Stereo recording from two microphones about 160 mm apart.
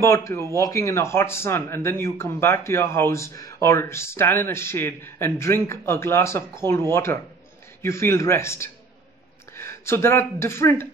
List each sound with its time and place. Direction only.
0.0 s speech: 15° left (ahead or behind)